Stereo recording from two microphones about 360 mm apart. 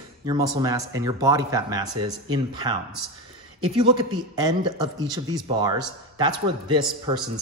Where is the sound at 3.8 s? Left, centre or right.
Centre.